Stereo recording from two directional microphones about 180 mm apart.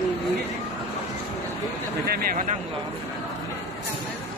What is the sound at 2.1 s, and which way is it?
Speech, 55° right (ahead or behind).